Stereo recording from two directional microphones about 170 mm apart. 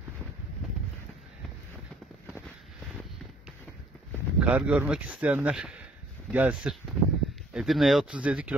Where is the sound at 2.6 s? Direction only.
Centre (ahead or behind).